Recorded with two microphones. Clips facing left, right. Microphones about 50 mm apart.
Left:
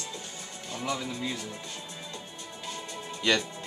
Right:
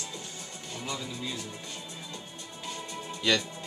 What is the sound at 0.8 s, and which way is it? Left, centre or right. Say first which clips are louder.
Music: left 4 dB; left.